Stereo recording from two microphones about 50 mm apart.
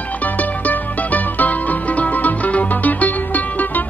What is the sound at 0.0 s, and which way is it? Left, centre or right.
Music, left.